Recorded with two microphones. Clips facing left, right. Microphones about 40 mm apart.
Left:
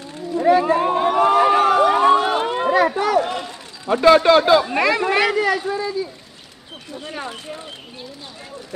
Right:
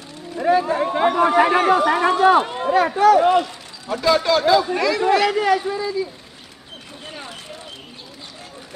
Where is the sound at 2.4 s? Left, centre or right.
Left.